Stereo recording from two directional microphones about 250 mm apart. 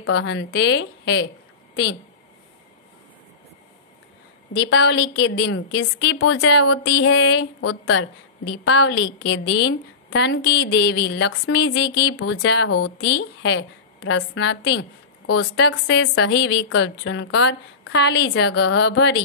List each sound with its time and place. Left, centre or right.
0.0 s a woman's voice: left
4.6 s a woman's voice: left
6.1 s a woman's voice: left
6.9 s a woman's voice: left
13.0 s a woman's voice: left